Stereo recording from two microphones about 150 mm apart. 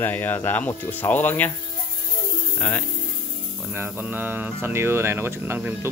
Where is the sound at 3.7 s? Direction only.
15° right (ahead or behind).